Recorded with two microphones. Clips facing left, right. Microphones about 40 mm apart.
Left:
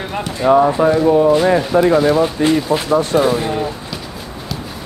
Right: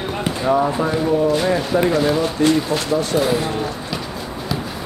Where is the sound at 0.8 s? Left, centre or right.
Left.